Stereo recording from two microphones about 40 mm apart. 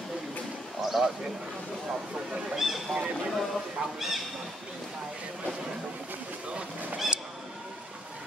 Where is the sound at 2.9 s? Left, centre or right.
Right.